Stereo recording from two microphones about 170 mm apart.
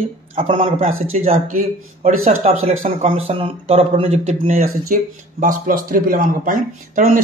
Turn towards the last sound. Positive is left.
turn(degrees=-55)  # may be behind; listen again after turning